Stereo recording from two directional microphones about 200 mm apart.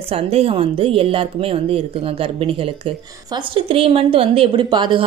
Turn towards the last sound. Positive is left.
turn(degrees=-25)  # may be behind; listen again after turning